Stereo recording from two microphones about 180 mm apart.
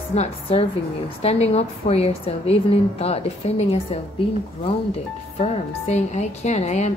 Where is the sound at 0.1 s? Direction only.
35° left (ahead or behind).